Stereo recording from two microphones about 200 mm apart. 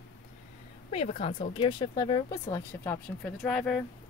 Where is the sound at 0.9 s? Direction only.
30° left (ahead or behind).